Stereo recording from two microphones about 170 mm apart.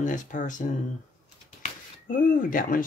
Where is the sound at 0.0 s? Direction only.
50° left (ahead or behind).